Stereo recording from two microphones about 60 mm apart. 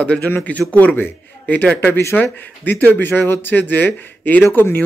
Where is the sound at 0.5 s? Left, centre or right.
Left.